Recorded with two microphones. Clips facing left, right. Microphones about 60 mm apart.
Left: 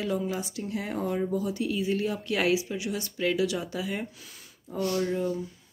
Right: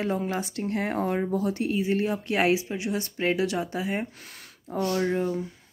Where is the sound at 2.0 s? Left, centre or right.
Right.